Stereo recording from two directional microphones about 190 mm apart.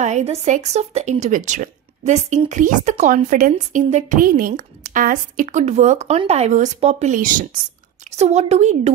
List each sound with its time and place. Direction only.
0.0 s speech: 35° right (ahead or behind)